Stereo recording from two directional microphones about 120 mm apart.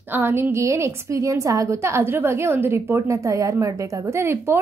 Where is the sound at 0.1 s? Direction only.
20° right (ahead or behind).